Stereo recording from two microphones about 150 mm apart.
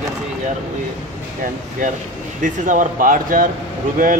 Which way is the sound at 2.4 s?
60° right (ahead or behind).